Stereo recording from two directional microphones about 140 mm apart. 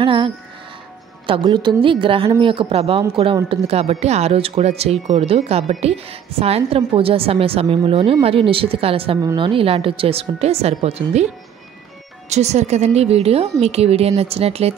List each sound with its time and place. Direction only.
0.0 s a woman's voice: 40° right (ahead or behind)
9.2 s speech: 30° right (ahead or behind); by 11.2 s 50° right (ahead or behind)
12.3 s speech: 55° right (ahead or behind)